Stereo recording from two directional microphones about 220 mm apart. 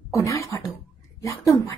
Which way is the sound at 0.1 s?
15° left (ahead or behind).